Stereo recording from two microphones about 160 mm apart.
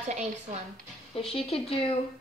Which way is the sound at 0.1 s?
45° right (ahead or behind).